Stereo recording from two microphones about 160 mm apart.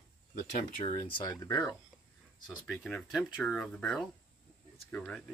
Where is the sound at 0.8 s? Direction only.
30° left (ahead or behind).